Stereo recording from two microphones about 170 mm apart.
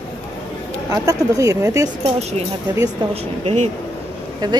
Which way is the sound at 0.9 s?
20° right (ahead or behind).